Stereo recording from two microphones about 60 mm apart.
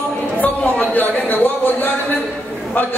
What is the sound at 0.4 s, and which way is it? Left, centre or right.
Speech, left.